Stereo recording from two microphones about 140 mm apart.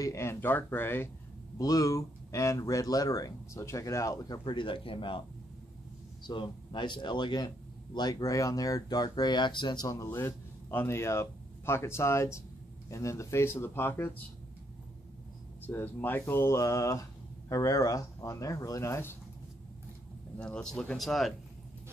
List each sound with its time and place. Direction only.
0.0 s speech: 20° left (ahead or behind); by 5.2 s 40° left (ahead or behind)
6.2 s a man's voice: 35° left (ahead or behind)
10.0 s speech: 15° left (ahead or behind)
15.6 s speech: 15° left (ahead or behind)
20.3 s speech: 5° left (ahead or behind)